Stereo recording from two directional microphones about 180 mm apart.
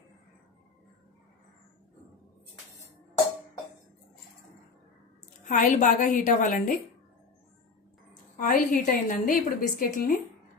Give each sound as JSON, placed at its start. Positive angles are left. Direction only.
{"t": 5.5, "sound": "a woman's voice", "side_deg": 45}
{"t": 8.4, "sound": "a woman's voice", "side_deg": 50}